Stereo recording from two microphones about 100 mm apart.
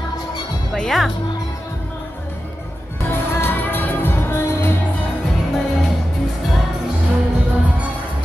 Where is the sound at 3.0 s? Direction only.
25° left (ahead or behind).